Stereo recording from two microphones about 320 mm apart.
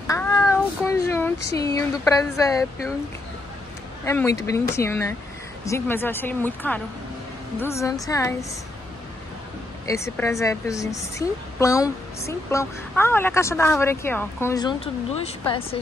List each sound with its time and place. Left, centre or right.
0.0 s child singing: centre
1.0 s a sound: centre
1.6 s a woman's voice: centre
4.0 s a woman's voice: centre
9.8 s a woman's voice: centre